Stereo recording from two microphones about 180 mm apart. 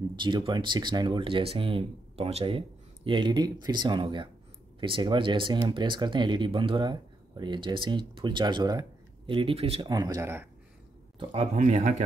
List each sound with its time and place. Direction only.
0.1 s speech: 25° right (ahead or behind)
11.1 s speech: 40° right (ahead or behind)